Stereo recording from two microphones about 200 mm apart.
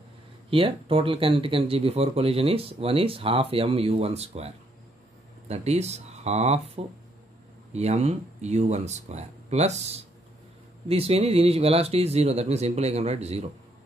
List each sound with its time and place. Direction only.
0.5 s speech: 25° right (ahead or behind)
7.7 s speech: 35° right (ahead or behind)